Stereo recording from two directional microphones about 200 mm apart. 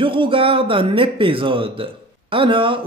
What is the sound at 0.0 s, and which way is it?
Speech, 25° right (ahead or behind).